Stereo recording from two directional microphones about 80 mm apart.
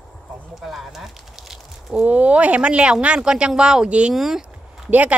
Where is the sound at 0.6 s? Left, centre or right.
Centre.